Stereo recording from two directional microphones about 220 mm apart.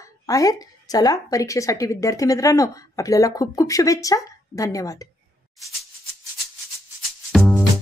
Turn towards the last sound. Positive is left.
turn(degrees=0)  # may be behind; listen again after turning